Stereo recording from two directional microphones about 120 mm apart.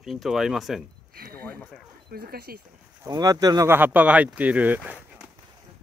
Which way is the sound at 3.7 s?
15° right (ahead or behind).